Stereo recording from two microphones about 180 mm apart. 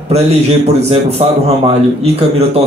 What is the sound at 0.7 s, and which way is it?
Speech, 35° right (ahead or behind).